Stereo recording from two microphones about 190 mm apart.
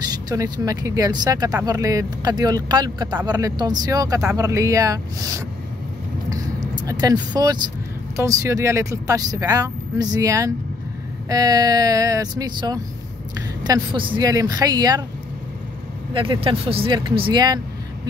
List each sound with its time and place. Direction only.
0.3 s speech: 15° right (ahead or behind)
6.7 s speech: 20° right (ahead or behind)
16.1 s speech: 25° right (ahead or behind)